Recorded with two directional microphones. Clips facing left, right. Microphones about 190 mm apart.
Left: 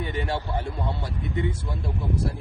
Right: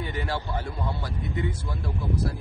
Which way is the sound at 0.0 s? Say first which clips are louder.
Left 2 dB; 25° left (ahead or behind).